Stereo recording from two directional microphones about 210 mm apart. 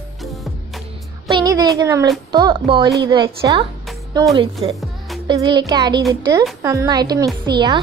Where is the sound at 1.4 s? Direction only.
15° right (ahead or behind).